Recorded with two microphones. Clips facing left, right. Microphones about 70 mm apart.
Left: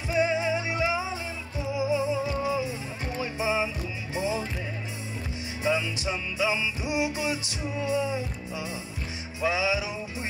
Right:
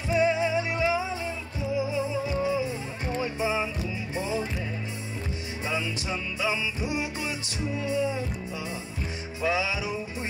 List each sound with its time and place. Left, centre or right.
0.2 s music: centre
5.6 s music: centre
9.4 s music: centre